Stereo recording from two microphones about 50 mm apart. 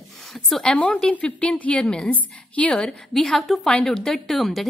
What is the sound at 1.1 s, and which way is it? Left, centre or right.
A woman's voice, left.